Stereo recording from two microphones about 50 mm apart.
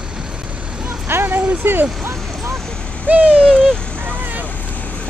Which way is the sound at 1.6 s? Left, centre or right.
Right.